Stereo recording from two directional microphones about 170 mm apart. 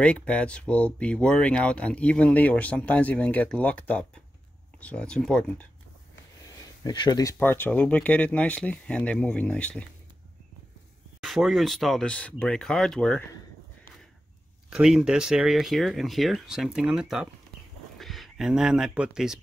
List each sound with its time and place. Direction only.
0.0 s speech: 5° left (ahead or behind)
6.8 s speech: 25° left (ahead or behind)
7.3 s speech: 10° left (ahead or behind)
11.2 s speech: centre (ahead or behind)
14.7 s speech: 5° right (ahead or behind)